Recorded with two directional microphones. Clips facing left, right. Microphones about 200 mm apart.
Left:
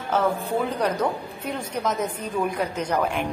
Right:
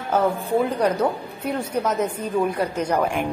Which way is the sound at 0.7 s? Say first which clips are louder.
Right 3 dB; 10° right (ahead or behind).